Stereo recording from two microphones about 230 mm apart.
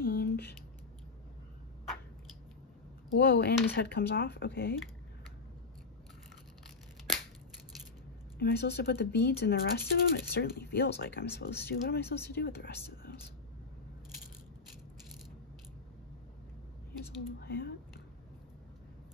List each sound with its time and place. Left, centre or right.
0.0 s a sound: left
3.2 s speech: left
8.4 s speech: left
17.4 s speech: left